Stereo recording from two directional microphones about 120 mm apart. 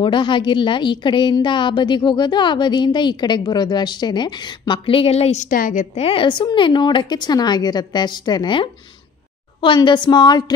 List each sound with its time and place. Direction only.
0.0 s a woman's voice: 40° left (ahead or behind); by 6.0 s 90° left
6.0 s a woman's voice: 45° left (ahead or behind)